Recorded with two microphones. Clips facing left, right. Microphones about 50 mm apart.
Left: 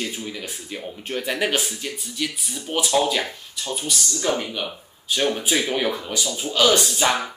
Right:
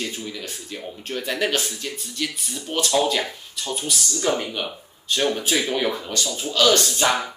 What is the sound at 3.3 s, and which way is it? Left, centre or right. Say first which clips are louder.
Speech: even; centre.